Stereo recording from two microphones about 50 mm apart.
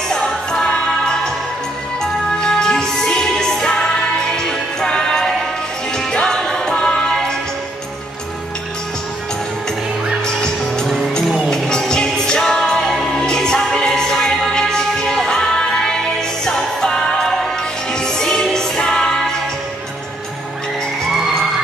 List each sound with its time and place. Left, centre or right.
0.1 s music: centre
10.2 s music: centre